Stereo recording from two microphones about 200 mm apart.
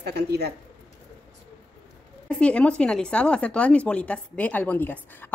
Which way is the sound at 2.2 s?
5° left (ahead or behind).